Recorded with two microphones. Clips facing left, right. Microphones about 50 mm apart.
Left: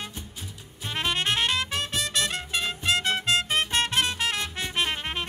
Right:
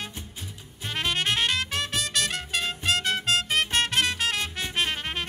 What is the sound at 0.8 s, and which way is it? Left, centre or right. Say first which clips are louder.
Music: even; centre.